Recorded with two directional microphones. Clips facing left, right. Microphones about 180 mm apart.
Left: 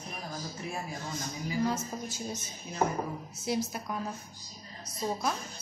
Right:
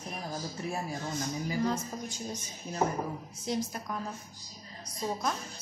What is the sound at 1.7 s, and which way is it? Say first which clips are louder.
A woman's voice: even; 5° left (ahead or behind).